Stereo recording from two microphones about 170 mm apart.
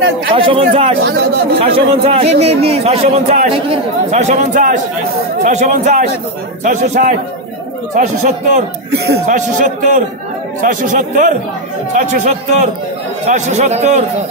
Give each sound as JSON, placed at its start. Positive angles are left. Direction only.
{"t": 0.4, "sound": "speech", "side_deg": -35}
{"t": 1.0, "sound": "speech", "side_deg": -75}
{"t": 1.6, "sound": "a man's voice", "side_deg": -35}
{"t": 8.9, "sound": "speech", "side_deg": -70}
{"t": 9.3, "sound": "a man's voice", "side_deg": -50}